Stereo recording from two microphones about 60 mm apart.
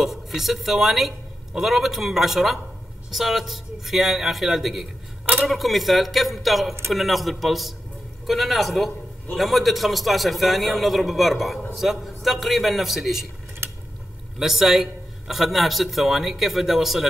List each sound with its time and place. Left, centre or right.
0.0 s a man's voice: centre
13.6 s a sound: right
14.4 s a man's voice: centre